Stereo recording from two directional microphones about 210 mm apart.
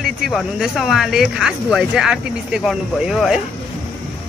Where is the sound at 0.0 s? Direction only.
Centre (ahead or behind).